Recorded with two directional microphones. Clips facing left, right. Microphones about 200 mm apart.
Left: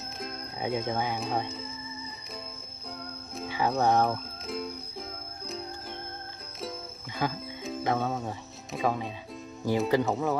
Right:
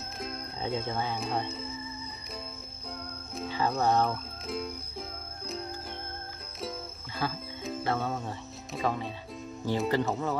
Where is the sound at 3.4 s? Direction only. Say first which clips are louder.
Left 2 dB; 15° left (ahead or behind).